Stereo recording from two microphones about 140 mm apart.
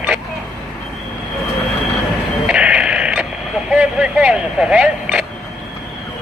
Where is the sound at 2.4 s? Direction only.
5° right (ahead or behind).